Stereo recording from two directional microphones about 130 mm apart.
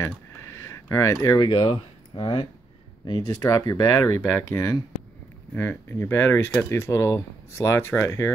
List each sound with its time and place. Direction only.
0.7 s speech: 20° left (ahead or behind)
1.4 s speech: 40° left (ahead or behind); by 8.3 s 20° left (ahead or behind)